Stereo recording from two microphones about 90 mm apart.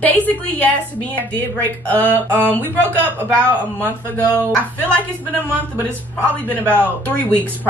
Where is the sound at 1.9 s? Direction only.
20° left (ahead or behind).